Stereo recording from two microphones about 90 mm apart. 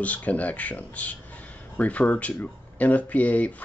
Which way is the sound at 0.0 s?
15° left (ahead or behind).